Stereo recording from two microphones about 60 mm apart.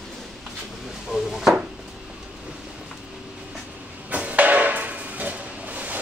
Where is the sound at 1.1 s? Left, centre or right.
Centre.